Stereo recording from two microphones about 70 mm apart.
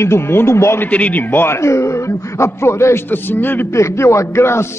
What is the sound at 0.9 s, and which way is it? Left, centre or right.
A man's voice, left.